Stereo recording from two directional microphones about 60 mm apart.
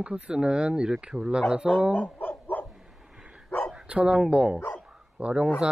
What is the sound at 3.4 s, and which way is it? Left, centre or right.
Bow-wow, left.